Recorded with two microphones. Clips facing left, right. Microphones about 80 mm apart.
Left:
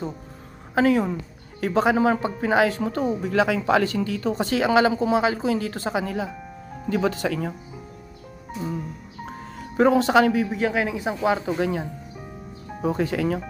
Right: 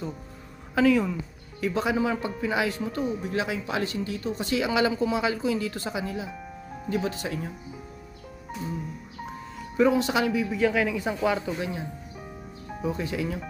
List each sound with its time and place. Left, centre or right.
0.7 s speech: left
3.2 s speech: left
6.0 s speech: left
8.6 s speech: left
11.6 s speech: left